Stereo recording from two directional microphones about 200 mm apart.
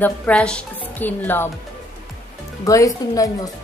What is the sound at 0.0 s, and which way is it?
Speech, 5° left (ahead or behind).